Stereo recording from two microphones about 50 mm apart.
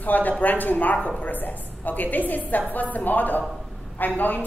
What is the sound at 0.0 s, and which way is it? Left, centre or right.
A woman's voice, left.